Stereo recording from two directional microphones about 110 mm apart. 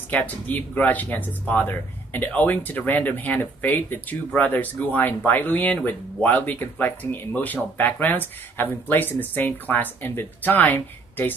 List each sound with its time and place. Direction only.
0.1 s speech: 15° left (ahead or behind)